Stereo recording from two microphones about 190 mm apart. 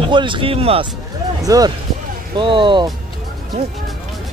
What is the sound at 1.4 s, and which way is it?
Speech, 20° right (ahead or behind).